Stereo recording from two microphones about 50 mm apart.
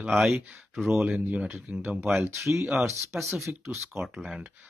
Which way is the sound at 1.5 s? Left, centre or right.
Right.